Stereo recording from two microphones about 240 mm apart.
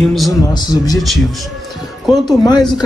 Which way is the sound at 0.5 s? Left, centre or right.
Centre.